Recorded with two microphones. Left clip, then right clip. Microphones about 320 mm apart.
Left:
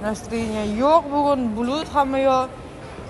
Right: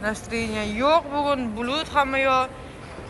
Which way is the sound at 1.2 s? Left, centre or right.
Centre.